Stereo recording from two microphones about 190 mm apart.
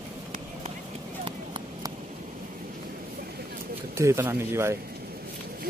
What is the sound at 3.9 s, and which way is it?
Speech, 15° right (ahead or behind).